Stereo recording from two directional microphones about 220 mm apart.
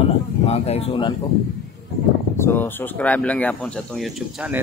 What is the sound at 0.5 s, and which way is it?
Speech, 30° left (ahead or behind).